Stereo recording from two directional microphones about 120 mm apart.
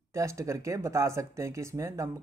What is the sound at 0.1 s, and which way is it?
Speech, 25° right (ahead or behind).